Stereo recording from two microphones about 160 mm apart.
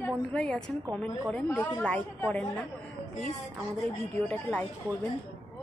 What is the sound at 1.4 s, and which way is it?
Speech, 20° left (ahead or behind).